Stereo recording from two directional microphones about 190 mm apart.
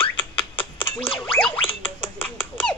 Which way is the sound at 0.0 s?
25° left (ahead or behind).